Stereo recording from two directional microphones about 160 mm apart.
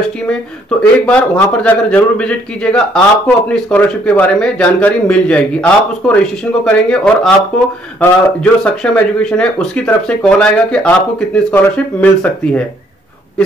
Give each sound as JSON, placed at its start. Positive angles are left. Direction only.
{"t": 0.3, "sound": "a man's voice", "side_deg": 5}